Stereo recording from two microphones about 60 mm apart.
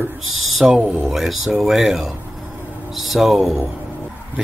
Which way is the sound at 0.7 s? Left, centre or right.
Centre.